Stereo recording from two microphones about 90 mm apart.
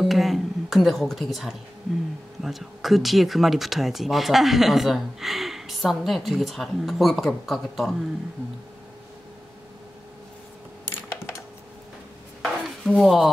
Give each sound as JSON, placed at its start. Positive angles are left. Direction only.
{"t": 0.0, "sound": "a woman's voice", "side_deg": 0}
{"t": 11.1, "sound": "coin", "side_deg": 30}
{"t": 12.4, "sound": "chopping", "side_deg": 5}